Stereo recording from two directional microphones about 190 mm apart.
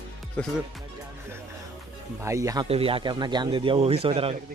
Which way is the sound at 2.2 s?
15° right (ahead or behind).